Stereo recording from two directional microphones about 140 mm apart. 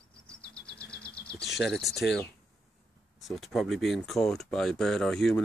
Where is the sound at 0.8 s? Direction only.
5° left (ahead or behind).